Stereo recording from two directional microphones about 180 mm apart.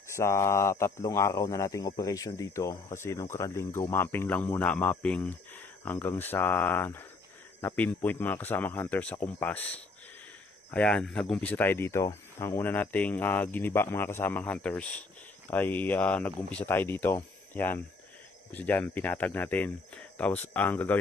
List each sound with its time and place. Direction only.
0.1 s speech: 15° left (ahead or behind)
10.7 s speech: 5° left (ahead or behind)